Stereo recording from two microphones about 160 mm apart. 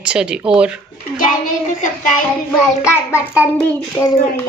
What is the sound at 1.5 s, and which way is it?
Child singing, 55° left (ahead or behind).